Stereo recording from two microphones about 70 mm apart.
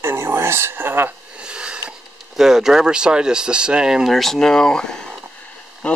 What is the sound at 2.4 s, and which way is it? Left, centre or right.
Speech, centre.